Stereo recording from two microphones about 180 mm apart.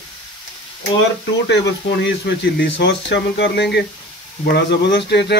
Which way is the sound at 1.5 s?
75° left (ahead or behind).